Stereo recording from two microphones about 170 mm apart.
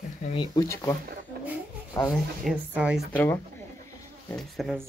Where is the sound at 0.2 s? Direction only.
30° left (ahead or behind).